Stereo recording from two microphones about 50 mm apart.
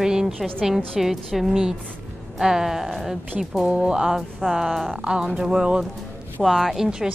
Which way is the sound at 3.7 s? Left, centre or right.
Centre.